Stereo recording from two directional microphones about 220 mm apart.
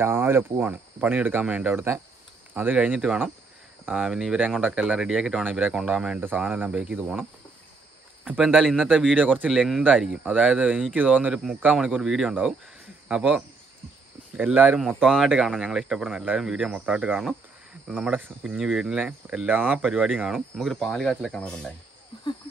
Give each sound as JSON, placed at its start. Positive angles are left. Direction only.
{"t": 0.0, "sound": "speech", "side_deg": -10}